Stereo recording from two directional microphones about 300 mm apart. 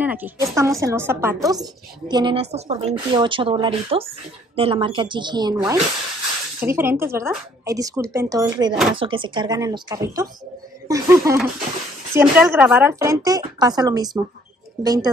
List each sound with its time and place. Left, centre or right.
0.0 s a woman's voice: centre